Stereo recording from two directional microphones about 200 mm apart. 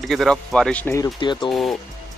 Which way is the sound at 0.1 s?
Centre (ahead or behind).